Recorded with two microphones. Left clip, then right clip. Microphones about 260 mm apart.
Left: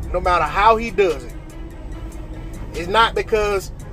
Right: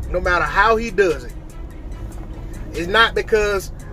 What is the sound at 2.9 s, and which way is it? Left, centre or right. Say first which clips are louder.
Speech: right 1 dB; right.